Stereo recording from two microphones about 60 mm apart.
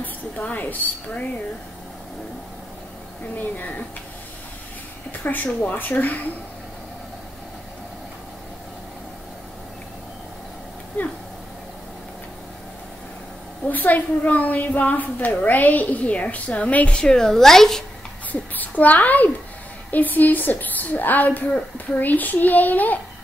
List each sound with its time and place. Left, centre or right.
0.0 s a woman's voice: left
3.3 s a woman's voice: left
5.2 s a woman's voice: left
13.7 s a woman's voice: left; by 17.8 s centre
18.3 s a woman's voice: left